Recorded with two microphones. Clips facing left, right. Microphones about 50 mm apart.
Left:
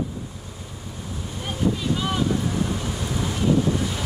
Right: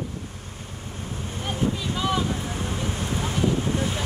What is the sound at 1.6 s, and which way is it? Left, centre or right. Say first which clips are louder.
Wind: left 3 dB; right.